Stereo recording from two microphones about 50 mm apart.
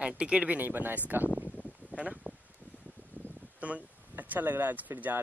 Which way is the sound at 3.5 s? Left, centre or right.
Right.